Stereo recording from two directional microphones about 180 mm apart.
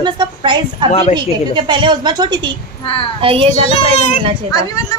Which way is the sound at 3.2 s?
30° right (ahead or behind).